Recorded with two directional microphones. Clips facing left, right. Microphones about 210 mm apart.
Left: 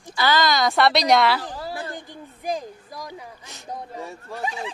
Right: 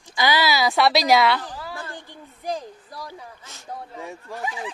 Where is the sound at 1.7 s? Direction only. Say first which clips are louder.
Left 4 dB; 15° left (ahead or behind).